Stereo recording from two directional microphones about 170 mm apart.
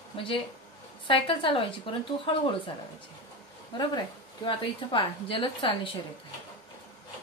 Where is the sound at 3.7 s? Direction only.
30° left (ahead or behind).